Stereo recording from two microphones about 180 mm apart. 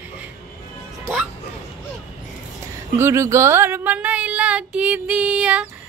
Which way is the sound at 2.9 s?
15° right (ahead or behind).